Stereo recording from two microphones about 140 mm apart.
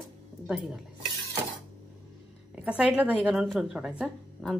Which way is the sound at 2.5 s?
10° right (ahead or behind).